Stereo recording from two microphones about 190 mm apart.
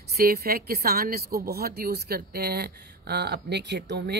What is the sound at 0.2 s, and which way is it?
A man's voice, 55° right (ahead or behind).